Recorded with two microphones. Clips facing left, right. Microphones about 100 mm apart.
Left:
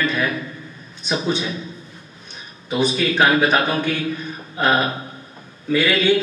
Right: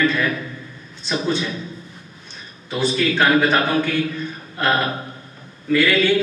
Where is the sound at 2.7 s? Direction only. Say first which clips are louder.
Even; 15° left (ahead or behind).